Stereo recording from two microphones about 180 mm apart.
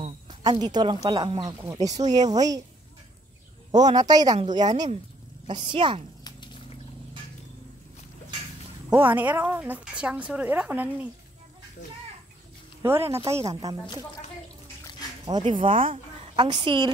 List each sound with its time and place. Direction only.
0.0 s speech: 25° right (ahead or behind)
3.7 s speech: 20° right (ahead or behind)
6.2 s a sound: 25° left (ahead or behind)
8.9 s speech: 10° right (ahead or behind)
12.8 s speech: 15° right (ahead or behind)
15.2 s a woman's voice: 25° right (ahead or behind)